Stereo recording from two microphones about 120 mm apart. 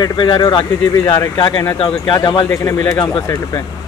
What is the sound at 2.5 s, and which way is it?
Speech, 25° left (ahead or behind).